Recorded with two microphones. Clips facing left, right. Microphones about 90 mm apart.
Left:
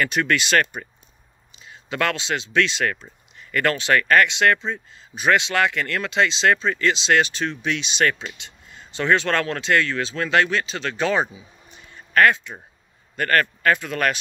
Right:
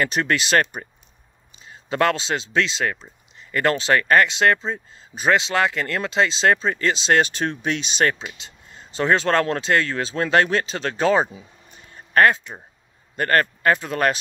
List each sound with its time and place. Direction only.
0.0 s speech: 30° right (ahead or behind)
11.9 s a sound: 35° right (ahead or behind)
13.1 s speech: 30° right (ahead or behind)